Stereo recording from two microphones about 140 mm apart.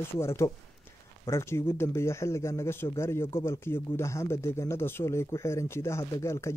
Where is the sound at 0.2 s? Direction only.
20° left (ahead or behind).